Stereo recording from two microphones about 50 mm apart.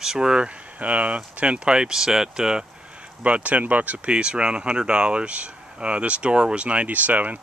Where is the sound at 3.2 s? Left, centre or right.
Right.